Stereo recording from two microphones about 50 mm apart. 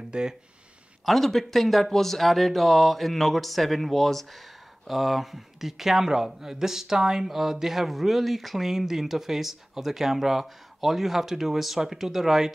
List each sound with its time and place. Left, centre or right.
0.1 s speech: centre
1.0 s speech: centre